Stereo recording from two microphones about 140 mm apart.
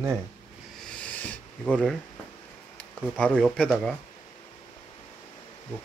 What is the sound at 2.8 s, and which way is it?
Speech, 10° left (ahead or behind).